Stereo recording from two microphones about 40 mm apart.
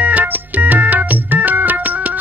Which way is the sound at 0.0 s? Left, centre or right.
Right.